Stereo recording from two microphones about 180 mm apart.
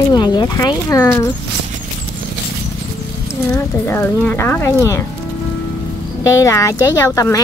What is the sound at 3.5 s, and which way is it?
Speech, 15° left (ahead or behind).